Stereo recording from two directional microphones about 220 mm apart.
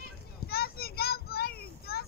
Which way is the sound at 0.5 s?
45° left (ahead or behind).